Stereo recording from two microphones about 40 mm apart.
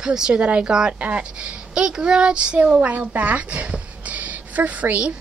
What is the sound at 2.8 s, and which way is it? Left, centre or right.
A woman's voice, right.